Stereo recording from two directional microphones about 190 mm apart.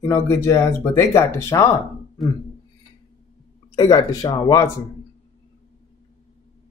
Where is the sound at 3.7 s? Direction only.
20° left (ahead or behind).